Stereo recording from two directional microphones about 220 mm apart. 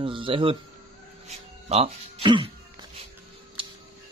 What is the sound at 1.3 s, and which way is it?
Music, 30° right (ahead or behind).